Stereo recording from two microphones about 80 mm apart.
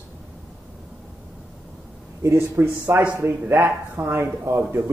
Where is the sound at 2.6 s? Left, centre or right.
Right.